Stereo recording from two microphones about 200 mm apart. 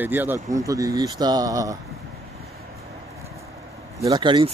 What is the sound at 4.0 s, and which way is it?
Speech, 20° right (ahead or behind).